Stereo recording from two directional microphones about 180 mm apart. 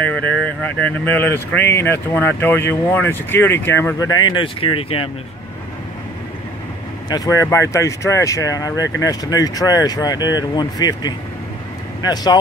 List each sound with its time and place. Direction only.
0.0 s speech: 10° left (ahead or behind); by 5.1 s 30° left (ahead or behind)
7.1 s speech: 20° left (ahead or behind)